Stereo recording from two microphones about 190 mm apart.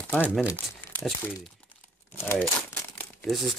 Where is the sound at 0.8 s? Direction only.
10° left (ahead or behind).